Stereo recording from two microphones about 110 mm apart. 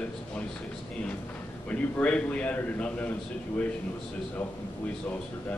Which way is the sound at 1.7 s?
15° left (ahead or behind).